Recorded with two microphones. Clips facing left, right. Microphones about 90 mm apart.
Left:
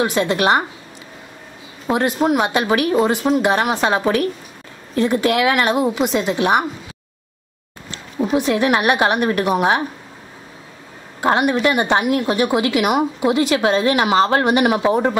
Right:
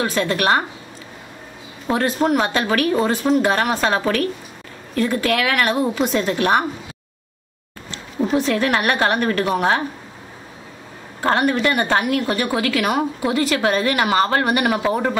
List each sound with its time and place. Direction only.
0.0 s speech: 15° left (ahead or behind)
1.9 s a woman's voice: 15° left (ahead or behind)
8.2 s speech: 15° left (ahead or behind)
11.1 s a woman's voice: 15° left (ahead or behind)